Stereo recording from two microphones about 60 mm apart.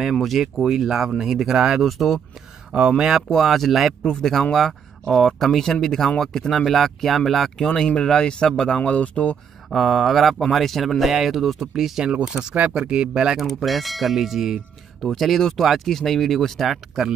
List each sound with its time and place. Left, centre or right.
0.1 s speech: centre
2.7 s speech: centre; by 9.4 s left
9.7 s speech: centre
12.0 s speech: centre
13.5 s speech: centre